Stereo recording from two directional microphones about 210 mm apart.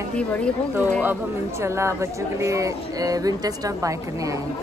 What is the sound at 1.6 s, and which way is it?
Speech, 15° right (ahead or behind).